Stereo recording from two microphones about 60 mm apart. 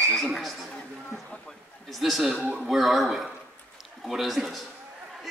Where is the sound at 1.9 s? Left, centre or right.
Centre.